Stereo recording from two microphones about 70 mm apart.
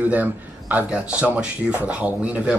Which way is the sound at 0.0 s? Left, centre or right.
Right.